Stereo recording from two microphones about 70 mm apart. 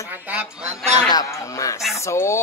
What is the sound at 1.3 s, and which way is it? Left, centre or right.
Speech, left.